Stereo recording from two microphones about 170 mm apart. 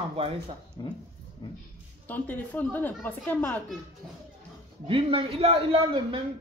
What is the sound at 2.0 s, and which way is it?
A woman's voice, 10° left (ahead or behind).